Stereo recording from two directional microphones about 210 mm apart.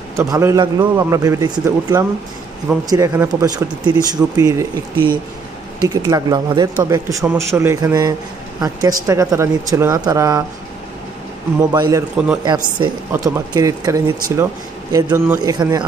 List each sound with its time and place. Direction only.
0.1 s a man's voice: 15° right (ahead or behind)
11.7 s a man's voice: 20° right (ahead or behind)